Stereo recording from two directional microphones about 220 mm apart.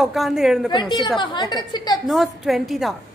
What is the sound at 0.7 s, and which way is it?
A woman's voice, 20° left (ahead or behind).